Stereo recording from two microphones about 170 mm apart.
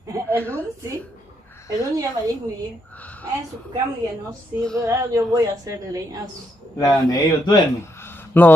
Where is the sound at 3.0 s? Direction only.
10° left (ahead or behind).